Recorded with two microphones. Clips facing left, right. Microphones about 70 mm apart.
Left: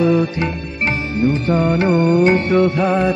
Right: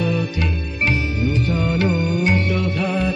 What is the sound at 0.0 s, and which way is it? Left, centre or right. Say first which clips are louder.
Music: left 7 dB; left.